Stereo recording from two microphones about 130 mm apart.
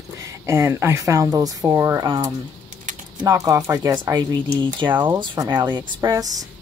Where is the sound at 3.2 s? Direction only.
25° right (ahead or behind).